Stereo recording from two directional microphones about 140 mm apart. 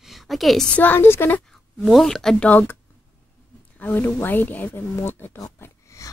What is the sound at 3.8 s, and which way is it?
Speech, 10° left (ahead or behind).